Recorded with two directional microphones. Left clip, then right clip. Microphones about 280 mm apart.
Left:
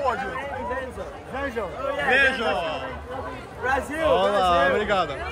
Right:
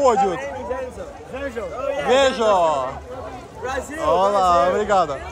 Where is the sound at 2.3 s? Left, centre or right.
Right.